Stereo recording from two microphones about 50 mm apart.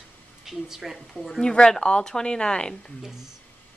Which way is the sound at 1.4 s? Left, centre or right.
Centre.